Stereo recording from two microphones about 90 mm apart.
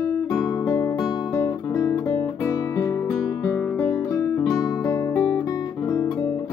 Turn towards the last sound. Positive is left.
turn(degrees=30)  # may be behind; listen again after turning